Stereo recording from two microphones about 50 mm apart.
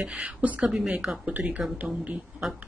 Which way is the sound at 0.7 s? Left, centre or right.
Centre.